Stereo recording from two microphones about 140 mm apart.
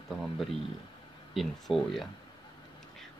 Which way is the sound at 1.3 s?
Centre (ahead or behind).